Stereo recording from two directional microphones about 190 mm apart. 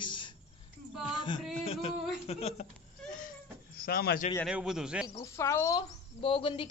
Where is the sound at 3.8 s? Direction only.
55° left (ahead or behind).